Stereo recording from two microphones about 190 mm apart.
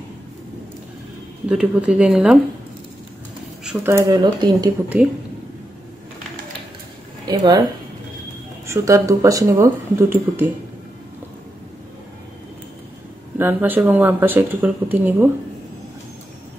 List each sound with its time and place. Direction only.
1.5 s speech: 5° right (ahead or behind)
3.6 s speech: 15° right (ahead or behind)
7.2 s speech: 20° right (ahead or behind)
8.6 s speech: 15° right (ahead or behind)
13.4 s speech: 10° right (ahead or behind)